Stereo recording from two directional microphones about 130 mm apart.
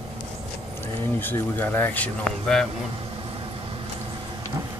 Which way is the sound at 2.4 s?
5° left (ahead or behind).